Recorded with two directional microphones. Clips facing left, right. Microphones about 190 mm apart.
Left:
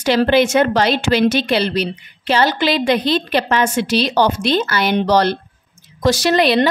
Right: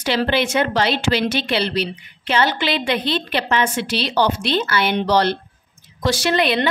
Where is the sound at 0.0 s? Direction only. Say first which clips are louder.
Left 6 dB; 45° left (ahead or behind).